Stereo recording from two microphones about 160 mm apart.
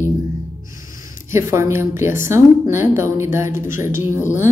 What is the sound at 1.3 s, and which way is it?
Speech, 15° right (ahead or behind).